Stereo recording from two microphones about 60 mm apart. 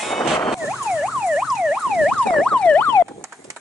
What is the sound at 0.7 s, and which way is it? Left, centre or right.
Emergency vehicle, centre.